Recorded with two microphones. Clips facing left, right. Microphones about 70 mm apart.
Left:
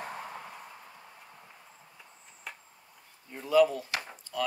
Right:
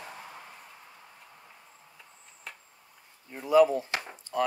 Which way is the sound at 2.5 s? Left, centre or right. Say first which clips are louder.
Left 1 dB; centre.